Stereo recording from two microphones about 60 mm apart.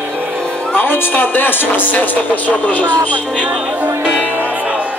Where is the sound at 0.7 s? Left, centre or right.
Left.